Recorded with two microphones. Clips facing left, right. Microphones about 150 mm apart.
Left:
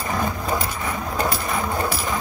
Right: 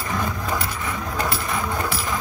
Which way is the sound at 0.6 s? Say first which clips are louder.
Left 2 dB; 40° left (ahead or behind).